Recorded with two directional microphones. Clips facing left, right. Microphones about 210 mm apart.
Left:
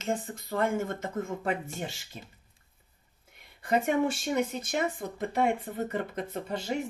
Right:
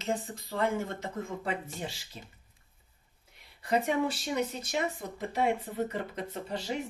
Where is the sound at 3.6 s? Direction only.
50° left (ahead or behind).